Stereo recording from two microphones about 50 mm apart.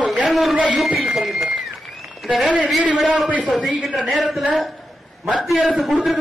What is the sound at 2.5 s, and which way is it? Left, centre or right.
Speech, right.